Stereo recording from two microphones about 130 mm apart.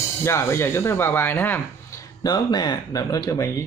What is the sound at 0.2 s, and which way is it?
Speech, 20° left (ahead or behind).